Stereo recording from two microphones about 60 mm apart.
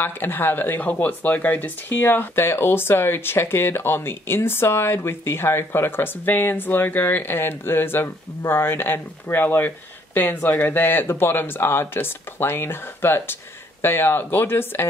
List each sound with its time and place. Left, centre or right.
0.0 s speech: left